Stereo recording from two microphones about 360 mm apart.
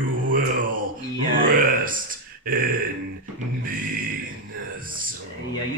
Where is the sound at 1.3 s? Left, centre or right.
Right.